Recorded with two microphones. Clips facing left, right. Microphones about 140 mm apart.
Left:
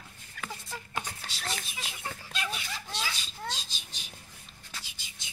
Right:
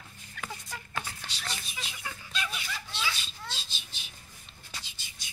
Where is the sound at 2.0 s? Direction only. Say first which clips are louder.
Left 1 dB; 40° left (ahead or behind).